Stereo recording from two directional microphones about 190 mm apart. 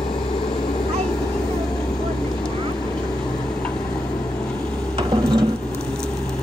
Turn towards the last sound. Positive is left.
turn(degrees=-25)  # may be behind; listen again after turning